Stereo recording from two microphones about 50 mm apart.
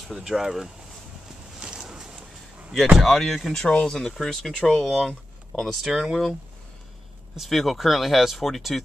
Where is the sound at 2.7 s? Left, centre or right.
Centre.